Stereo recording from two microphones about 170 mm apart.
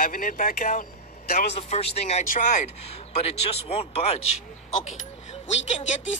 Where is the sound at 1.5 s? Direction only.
35° left (ahead or behind).